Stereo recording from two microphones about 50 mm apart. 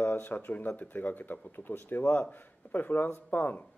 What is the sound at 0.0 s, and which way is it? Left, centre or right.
Speech, left.